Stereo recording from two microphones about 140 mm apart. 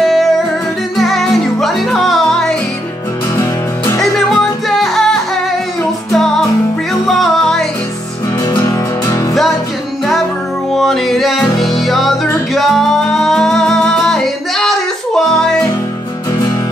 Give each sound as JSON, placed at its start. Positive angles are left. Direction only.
{"t": 0.0, "sound": "music", "side_deg": 0}
{"t": 3.3, "sound": "music", "side_deg": 25}
{"t": 4.0, "sound": "music", "side_deg": 0}
{"t": 8.5, "sound": "music", "side_deg": 25}
{"t": 10.7, "sound": "music", "side_deg": 0}